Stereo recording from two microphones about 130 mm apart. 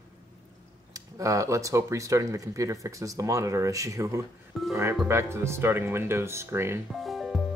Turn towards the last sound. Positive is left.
turn(degrees=0)  # may be behind; listen again after turning